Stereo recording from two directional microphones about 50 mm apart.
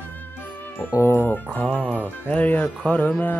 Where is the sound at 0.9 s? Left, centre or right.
Left.